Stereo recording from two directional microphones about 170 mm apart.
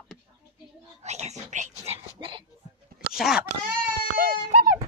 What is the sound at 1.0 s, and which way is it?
Whispering, 40° right (ahead or behind).